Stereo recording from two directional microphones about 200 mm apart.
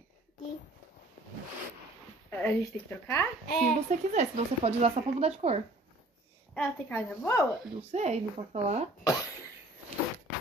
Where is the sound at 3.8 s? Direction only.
35° right (ahead or behind).